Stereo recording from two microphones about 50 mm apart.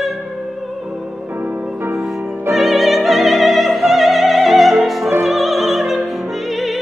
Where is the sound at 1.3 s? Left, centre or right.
Right.